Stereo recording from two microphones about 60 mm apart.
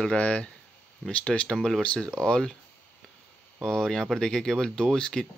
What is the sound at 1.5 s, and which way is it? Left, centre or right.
Speech, centre.